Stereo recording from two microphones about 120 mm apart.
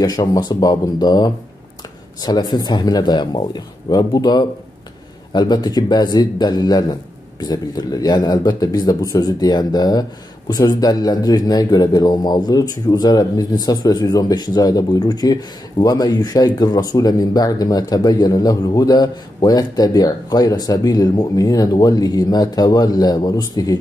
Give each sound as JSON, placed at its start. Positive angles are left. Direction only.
{"t": 0.0, "sound": "speech", "side_deg": 35}